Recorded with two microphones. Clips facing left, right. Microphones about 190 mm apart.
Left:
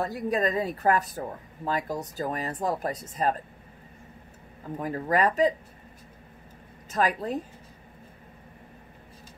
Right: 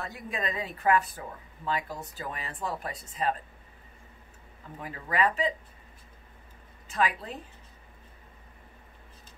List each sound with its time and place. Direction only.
0.0 s speech: 40° left (ahead or behind)
4.7 s speech: 45° left (ahead or behind)
6.9 s speech: 45° left (ahead or behind)